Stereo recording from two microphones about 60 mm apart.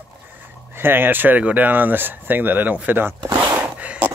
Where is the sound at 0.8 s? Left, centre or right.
Right.